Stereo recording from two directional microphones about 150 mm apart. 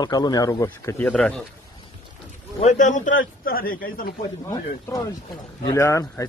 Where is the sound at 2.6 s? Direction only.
55° left (ahead or behind); by 4.1 s 75° left (ahead or behind).